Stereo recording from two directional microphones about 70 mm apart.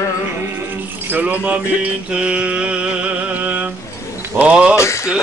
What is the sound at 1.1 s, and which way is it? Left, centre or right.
Music, right.